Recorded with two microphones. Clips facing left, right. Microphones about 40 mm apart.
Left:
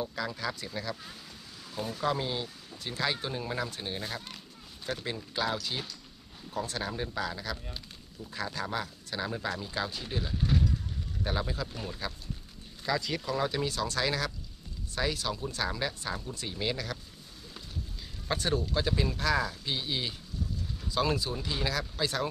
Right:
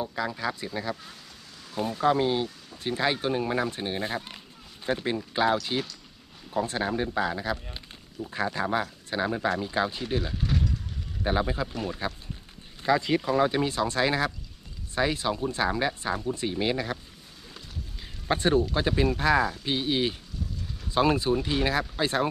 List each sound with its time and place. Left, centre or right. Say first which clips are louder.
0.0 s speech: right 4 dB; centre; by 10.3 s right
11.2 s speech: right 7 dB; right
11.7 s speech: right 7 dB; right
12.8 s speech: right 7 dB; right
18.3 s speech: right 6 dB; right